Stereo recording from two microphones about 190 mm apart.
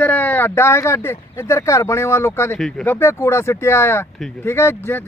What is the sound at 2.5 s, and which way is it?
Speech, centre (ahead or behind).